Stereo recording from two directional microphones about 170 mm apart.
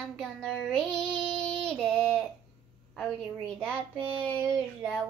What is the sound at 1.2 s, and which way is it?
Child singing, 5° left (ahead or behind).